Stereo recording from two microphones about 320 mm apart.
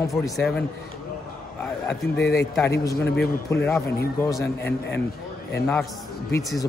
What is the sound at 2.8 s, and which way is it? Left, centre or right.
A man's voice, centre.